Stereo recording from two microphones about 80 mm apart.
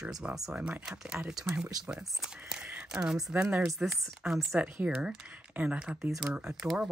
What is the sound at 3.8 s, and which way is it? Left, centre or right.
Speech, centre.